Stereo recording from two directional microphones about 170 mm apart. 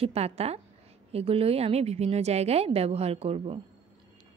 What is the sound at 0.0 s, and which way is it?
A woman's voice, 35° right (ahead or behind).